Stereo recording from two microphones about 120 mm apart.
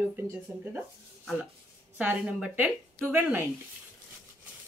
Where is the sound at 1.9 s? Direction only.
10° right (ahead or behind).